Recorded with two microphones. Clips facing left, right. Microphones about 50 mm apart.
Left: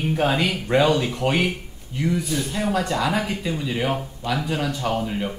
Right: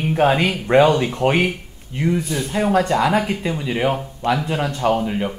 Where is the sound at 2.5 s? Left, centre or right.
Right.